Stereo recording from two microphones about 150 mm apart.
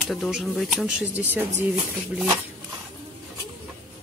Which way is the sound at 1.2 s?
10° right (ahead or behind).